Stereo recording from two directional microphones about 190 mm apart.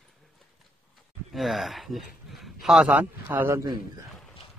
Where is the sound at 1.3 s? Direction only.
Centre (ahead or behind).